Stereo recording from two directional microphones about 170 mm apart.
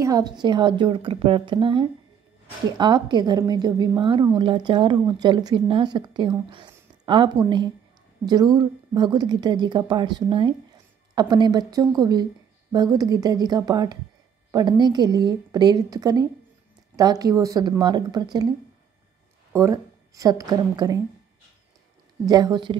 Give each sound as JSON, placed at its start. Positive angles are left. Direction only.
{"t": 0.0, "sound": "a woman's voice", "side_deg": -20}
{"t": 19.5, "sound": "a woman's voice", "side_deg": -15}
{"t": 22.2, "sound": "a woman's voice", "side_deg": -20}